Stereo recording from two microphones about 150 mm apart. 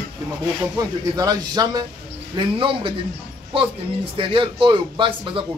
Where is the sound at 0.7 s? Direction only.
25° right (ahead or behind).